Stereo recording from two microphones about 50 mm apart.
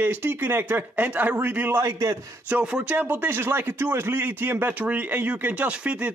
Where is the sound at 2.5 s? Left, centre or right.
Right.